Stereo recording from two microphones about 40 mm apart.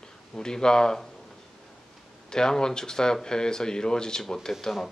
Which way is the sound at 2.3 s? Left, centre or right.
Centre.